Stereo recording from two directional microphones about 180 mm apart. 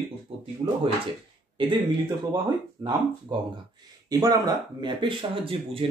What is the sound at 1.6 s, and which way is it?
Speech, 30° right (ahead or behind).